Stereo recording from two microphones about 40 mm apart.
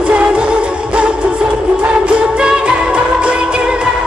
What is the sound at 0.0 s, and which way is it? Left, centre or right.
Music, right.